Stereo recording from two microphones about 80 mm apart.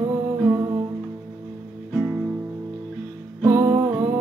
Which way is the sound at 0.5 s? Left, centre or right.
Right.